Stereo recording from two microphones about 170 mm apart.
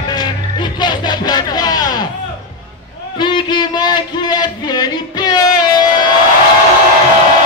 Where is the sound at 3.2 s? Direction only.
25° left (ahead or behind).